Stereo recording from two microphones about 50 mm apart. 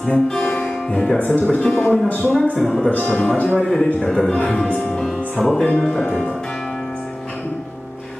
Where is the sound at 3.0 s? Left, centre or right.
Left.